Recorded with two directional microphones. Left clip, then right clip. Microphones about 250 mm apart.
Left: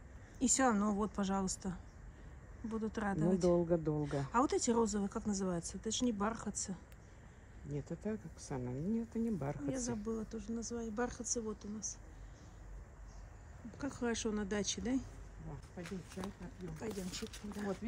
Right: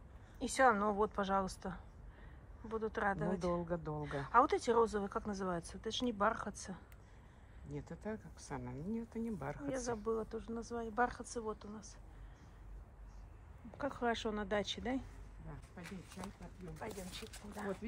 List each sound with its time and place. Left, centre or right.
0.4 s speech: centre
3.5 s speech: left
4.0 s speech: centre
7.6 s speech: left
9.7 s speech: centre
13.7 s speech: centre
16.8 s speech: centre